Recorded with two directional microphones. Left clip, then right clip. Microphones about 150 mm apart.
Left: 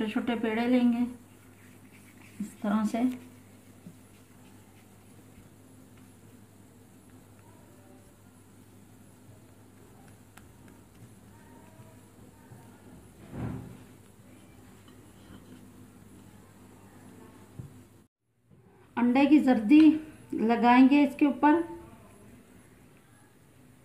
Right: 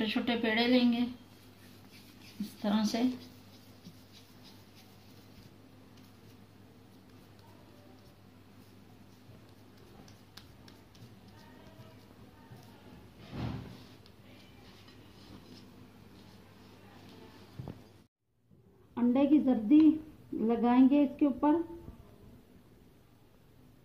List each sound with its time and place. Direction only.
0.0 s a woman's voice: 15° right (ahead or behind)
2.6 s a woman's voice: 5° right (ahead or behind)
18.9 s a woman's voice: 15° left (ahead or behind)